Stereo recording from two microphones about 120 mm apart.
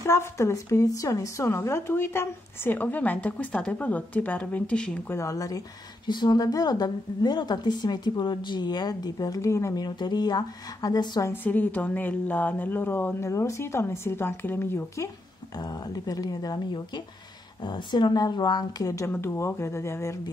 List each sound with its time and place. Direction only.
0.0 s a woman's voice: 20° left (ahead or behind)
5.1 s a woman's voice: 25° left (ahead or behind)
11.4 s a woman's voice: 15° left (ahead or behind)
15.5 s a woman's voice: 35° left (ahead or behind)